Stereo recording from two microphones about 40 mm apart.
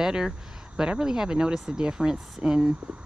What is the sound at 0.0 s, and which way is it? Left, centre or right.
Speech, centre.